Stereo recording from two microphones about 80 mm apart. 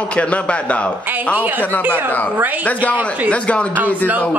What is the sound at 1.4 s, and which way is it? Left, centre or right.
Speech, right.